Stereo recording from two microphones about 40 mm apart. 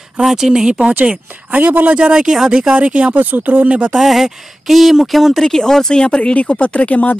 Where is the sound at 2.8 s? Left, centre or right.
Right.